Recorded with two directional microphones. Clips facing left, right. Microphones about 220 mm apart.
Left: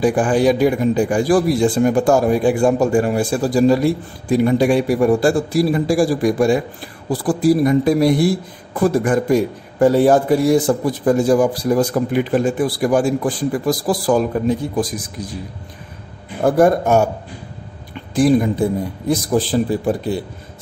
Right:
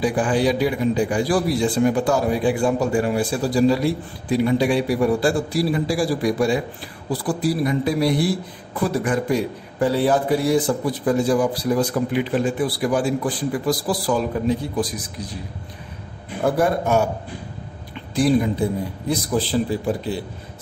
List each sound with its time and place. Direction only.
0.0 s a man's voice: 50° left (ahead or behind)
16.4 s a man's voice: 45° left (ahead or behind)
18.1 s a man's voice: 45° left (ahead or behind)